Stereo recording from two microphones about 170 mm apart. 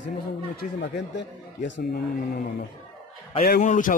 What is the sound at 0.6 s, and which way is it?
Speech, 85° left.